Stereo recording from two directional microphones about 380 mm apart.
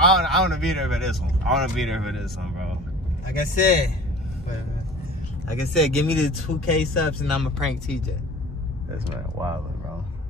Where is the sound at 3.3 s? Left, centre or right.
Left.